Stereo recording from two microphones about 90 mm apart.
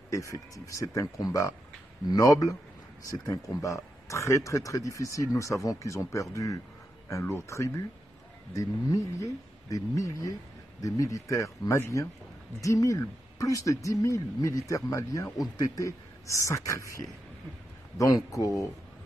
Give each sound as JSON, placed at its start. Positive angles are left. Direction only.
{"t": 0.1, "sound": "speech", "side_deg": 35}